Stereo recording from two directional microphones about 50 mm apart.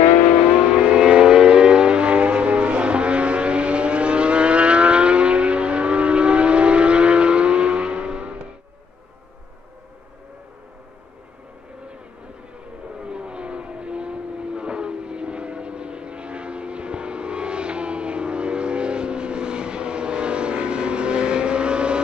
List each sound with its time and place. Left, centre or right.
0.4 s vehicle: centre
13.0 s vehicle: right